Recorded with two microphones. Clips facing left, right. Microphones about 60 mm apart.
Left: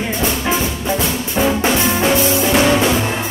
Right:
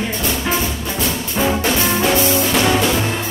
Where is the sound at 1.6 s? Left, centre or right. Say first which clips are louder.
Left 2 dB; left.